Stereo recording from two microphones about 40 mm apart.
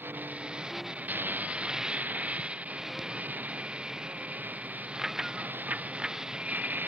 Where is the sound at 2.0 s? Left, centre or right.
Right.